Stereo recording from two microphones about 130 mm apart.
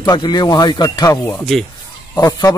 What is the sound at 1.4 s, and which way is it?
Speech, 5° left (ahead or behind).